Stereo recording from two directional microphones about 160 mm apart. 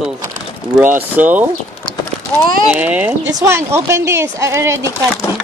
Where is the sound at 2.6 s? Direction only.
10° right (ahead or behind).